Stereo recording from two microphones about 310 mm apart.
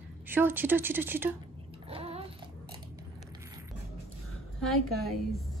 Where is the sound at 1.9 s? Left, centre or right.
Centre.